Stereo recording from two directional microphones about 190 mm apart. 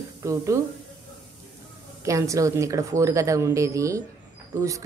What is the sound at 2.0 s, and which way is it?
Speech, 15° right (ahead or behind).